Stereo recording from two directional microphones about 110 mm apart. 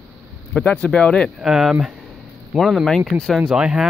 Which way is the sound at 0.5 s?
5° left (ahead or behind).